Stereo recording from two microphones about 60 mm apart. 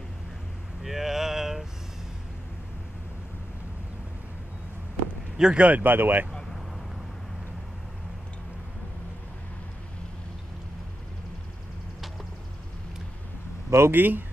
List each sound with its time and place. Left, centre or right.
0.8 s a sound: centre
5.4 s speech: centre; by 6.2 s right
13.7 s speech: right
13.9 s speech: right